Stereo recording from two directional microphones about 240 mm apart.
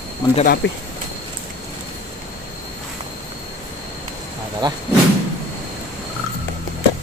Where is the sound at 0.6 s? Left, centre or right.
Left.